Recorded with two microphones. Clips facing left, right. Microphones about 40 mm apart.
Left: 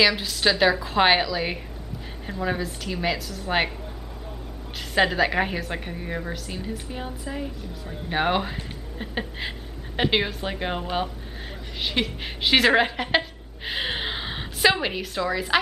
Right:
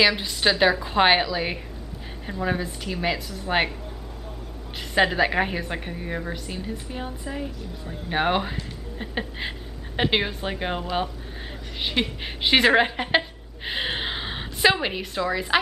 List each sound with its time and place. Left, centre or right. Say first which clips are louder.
0.0 s a woman's voice: even; centre
4.9 s a woman's voice: even; centre